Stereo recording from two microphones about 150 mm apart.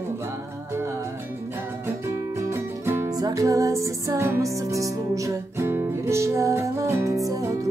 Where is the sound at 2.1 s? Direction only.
20° right (ahead or behind).